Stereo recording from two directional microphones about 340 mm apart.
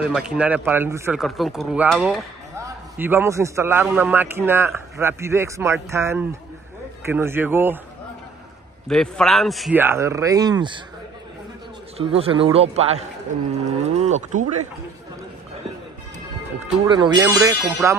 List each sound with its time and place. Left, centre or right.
0.0 s speech: centre
8.8 s a man's voice: centre
12.0 s speech: centre
13.8 s cattle: centre
16.5 s speech: centre